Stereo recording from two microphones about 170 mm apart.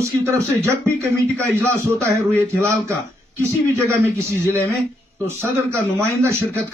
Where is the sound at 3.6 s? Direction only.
15° right (ahead or behind).